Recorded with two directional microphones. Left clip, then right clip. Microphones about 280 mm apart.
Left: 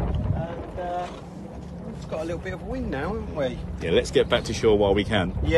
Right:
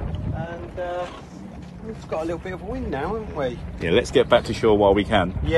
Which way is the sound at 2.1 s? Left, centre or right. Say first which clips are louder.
Right 3 dB; centre.